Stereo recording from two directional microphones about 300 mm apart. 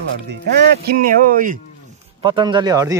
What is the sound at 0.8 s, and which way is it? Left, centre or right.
Speech, right.